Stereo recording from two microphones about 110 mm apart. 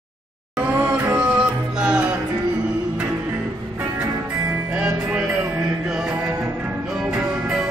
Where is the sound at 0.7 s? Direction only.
15° right (ahead or behind).